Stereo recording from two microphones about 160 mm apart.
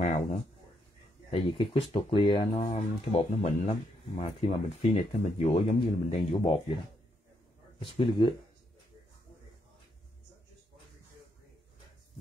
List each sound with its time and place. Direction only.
0.0 s a sound: 45° left (ahead or behind)
1.3 s speech: 35° left (ahead or behind)
2.6 s speech: 45° left (ahead or behind)
7.8 s speech: 35° left (ahead or behind)